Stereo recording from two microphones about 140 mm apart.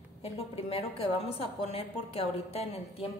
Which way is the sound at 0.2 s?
45° left (ahead or behind).